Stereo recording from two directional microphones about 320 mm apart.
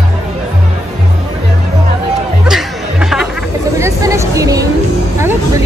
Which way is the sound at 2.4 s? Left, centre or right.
Centre.